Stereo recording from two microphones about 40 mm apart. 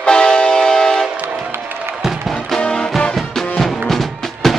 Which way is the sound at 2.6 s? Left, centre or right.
Left.